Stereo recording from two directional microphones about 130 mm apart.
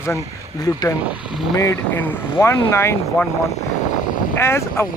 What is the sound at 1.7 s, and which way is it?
A man's voice, 15° left (ahead or behind).